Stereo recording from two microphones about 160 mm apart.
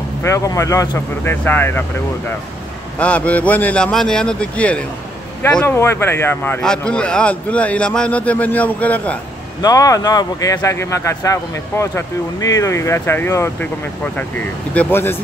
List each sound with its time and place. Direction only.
0.2 s a man's voice: 20° left (ahead or behind)
3.0 s a man's voice: 10° left (ahead or behind)
9.6 s a man's voice: 20° left (ahead or behind)